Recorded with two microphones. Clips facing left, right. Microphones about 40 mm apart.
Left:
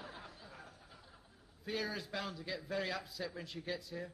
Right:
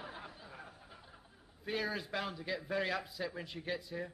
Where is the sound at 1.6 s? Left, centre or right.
Centre.